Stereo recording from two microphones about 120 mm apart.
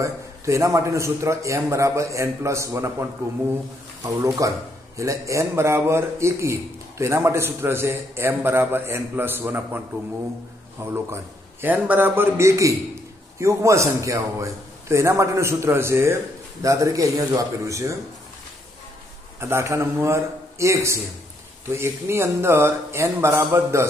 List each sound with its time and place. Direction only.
0.0 s a man's voice: 25° right (ahead or behind)
4.4 s a man's voice: 25° right (ahead or behind)
10.8 s a man's voice: 20° right (ahead or behind)
19.4 s a man's voice: 20° right (ahead or behind)